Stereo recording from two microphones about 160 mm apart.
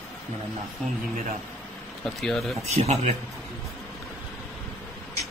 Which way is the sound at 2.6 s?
45° right (ahead or behind).